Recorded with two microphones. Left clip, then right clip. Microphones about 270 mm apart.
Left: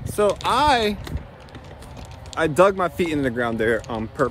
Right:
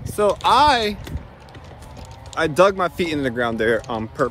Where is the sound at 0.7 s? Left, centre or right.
Centre.